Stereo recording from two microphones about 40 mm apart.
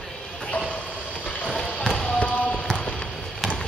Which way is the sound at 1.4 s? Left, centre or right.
Centre.